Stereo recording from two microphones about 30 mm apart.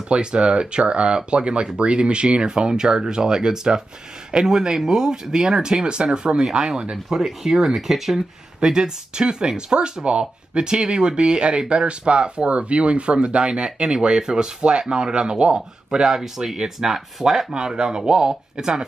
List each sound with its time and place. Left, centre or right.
0.1 s speech: right
7.2 s speech: centre
8.7 s speech: right
15.5 s speech: right